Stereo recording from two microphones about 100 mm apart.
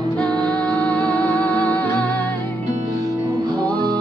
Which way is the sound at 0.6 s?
10° left (ahead or behind).